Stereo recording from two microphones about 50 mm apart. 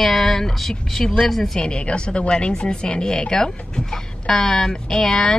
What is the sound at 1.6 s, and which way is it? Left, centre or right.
Speech, centre.